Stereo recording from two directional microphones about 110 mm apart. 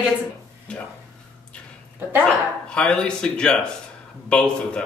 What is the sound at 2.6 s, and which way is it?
Speech, 10° left (ahead or behind).